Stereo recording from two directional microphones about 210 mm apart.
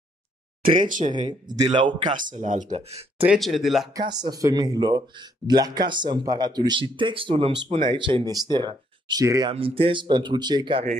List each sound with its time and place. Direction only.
0.6 s speech: 40° right (ahead or behind)
1.7 s speech: 25° right (ahead or behind)
2.3 s speech: 35° right (ahead or behind)
3.3 s speech: centre (ahead or behind)
3.9 s speech: 20° right (ahead or behind)